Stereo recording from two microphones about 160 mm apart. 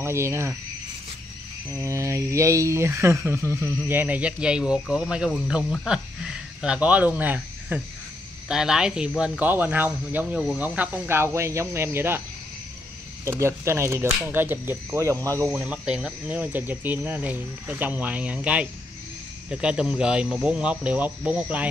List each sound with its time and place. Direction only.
0.0 s speech: 15° right (ahead or behind)
1.7 s speech: 20° right (ahead or behind)
13.2 s speech: 15° right (ahead or behind)
15.5 s speech: 5° right (ahead or behind)